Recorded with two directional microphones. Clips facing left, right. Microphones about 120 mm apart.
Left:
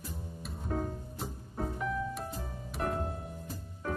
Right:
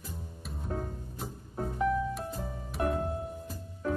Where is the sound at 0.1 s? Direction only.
Centre (ahead or behind).